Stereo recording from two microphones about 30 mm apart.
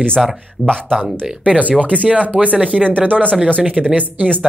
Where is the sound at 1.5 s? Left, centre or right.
Right.